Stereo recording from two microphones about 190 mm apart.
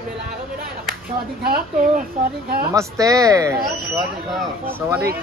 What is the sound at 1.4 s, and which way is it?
Speech, 50° right (ahead or behind).